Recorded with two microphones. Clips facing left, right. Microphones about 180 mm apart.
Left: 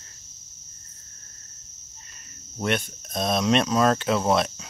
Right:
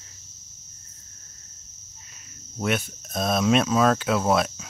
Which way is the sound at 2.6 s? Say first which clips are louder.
Even; 5° right (ahead or behind).